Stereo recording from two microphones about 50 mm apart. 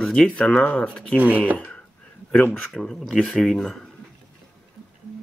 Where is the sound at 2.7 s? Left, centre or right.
Centre.